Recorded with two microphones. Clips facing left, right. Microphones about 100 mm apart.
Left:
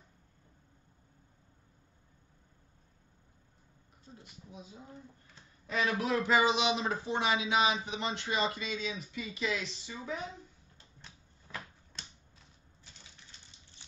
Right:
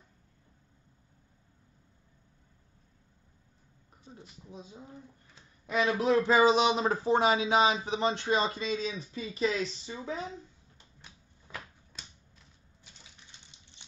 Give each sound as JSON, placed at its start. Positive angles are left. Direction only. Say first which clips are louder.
{"t": 5.7, "sound": "a man's voice", "louder": "right 5 dB", "side_deg": -25}
{"t": 11.5, "sound": "finger snapping", "louder": "even", "side_deg": -15}
{"t": 11.9, "sound": "finger snapping", "louder": "even", "side_deg": -5}